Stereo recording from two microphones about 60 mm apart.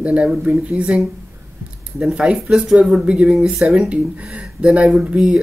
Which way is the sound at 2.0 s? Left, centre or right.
Centre.